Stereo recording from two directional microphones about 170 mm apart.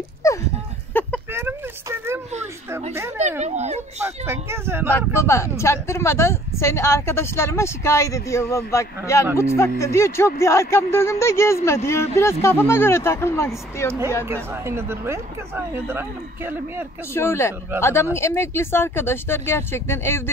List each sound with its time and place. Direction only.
0.2 s a sound: 15° left (ahead or behind)
1.3 s a sound: 15° right (ahead or behind)
2.9 s speech: 15° right (ahead or behind)
3.4 s speech: 40° right (ahead or behind)
4.0 s speech: 15° right (ahead or behind)
4.9 s speech: 15° left (ahead or behind)
14.2 s speech: 15° right (ahead or behind)
17.1 s speech: 15° left (ahead or behind)